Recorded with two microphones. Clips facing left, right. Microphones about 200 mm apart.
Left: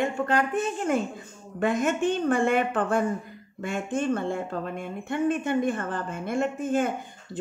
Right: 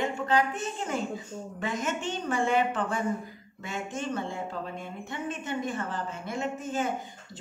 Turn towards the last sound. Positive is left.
turn(degrees=55)  # may be behind; listen again after turning